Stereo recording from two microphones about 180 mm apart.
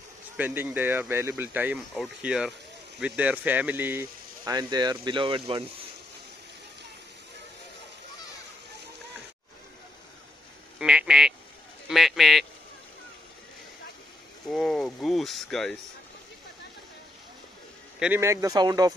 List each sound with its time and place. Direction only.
0.4 s speech: 10° right (ahead or behind); by 5.7 s 30° right (ahead or behind)
10.8 s quack: 5° right (ahead or behind)
11.9 s a man's voice: centre (ahead or behind)
14.5 s speech: centre (ahead or behind)
17.9 s a man's voice: 5° right (ahead or behind)
18.2 s speech: 15° right (ahead or behind)